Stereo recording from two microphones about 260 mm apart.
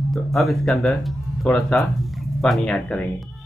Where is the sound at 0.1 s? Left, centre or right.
Centre.